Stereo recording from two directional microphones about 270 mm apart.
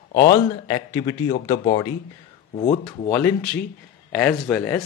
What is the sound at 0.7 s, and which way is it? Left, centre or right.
Speech, centre.